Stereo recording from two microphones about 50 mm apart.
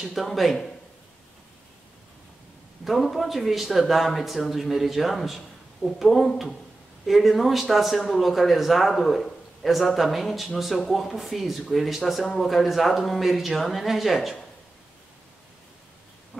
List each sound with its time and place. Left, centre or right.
0.0 s speech: centre
2.8 s speech: centre